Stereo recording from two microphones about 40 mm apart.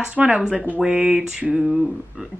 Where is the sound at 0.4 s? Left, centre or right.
Centre.